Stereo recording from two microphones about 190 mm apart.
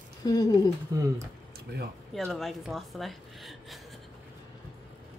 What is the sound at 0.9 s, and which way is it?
Speech, 20° right (ahead or behind).